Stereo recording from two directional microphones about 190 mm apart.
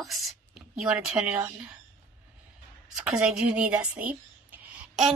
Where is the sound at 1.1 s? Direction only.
15° right (ahead or behind).